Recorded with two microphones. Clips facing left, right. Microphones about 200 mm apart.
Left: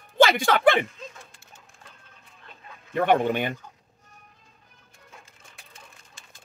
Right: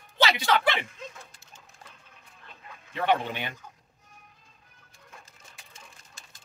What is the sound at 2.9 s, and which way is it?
Speech, 50° left (ahead or behind).